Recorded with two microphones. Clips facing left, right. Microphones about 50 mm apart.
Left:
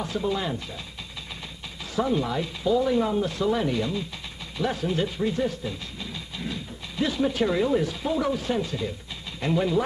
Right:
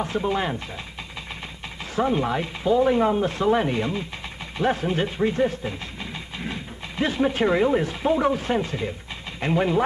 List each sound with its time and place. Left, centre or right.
0.0 s speech: right
2.0 s speech: right